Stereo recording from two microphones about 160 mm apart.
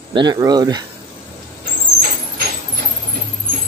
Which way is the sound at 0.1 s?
25° right (ahead or behind).